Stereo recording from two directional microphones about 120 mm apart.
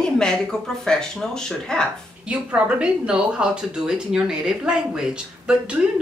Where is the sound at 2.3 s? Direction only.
10° right (ahead or behind).